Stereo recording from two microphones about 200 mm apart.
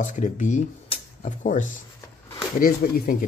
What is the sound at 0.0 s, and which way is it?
Speech, 40° left (ahead or behind).